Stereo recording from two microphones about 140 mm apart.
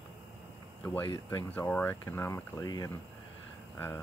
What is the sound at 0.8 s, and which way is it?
Speech, 15° left (ahead or behind).